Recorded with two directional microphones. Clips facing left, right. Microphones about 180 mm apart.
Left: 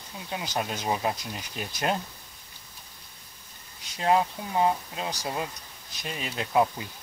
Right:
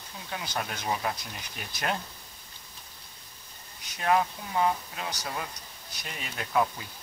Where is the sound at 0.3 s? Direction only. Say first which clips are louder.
Left 3 dB; 20° left (ahead or behind).